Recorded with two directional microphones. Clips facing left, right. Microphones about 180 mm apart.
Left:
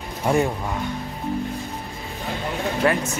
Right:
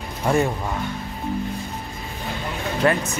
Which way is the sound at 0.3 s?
15° left (ahead or behind).